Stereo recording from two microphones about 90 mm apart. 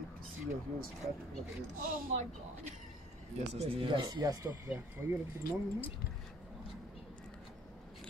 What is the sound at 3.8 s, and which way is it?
Speech, 60° right (ahead or behind).